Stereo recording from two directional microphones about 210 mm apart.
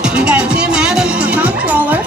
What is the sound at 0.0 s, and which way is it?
Music, 5° right (ahead or behind).